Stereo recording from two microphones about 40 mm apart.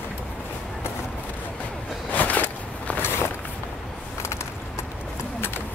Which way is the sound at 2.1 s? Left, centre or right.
Left.